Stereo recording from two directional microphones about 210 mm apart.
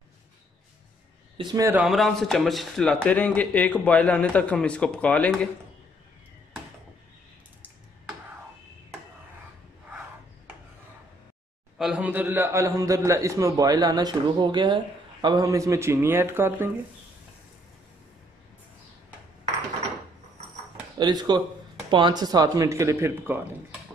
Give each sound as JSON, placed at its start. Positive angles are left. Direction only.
{"t": 1.4, "sound": "speech", "side_deg": -20}
{"t": 11.8, "sound": "a man's voice", "side_deg": -5}
{"t": 21.0, "sound": "a man's voice", "side_deg": -20}